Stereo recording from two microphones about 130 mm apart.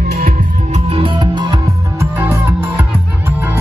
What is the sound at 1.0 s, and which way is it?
Music, 40° right (ahead or behind).